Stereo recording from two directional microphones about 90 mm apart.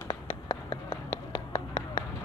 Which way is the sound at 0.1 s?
80° left.